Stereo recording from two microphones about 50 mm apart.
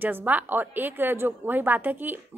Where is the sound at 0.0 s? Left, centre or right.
Right.